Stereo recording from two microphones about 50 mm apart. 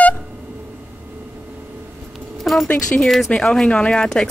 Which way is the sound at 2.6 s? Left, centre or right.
Left.